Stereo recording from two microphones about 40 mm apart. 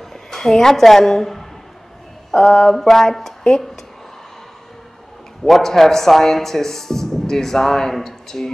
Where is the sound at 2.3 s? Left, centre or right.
Centre.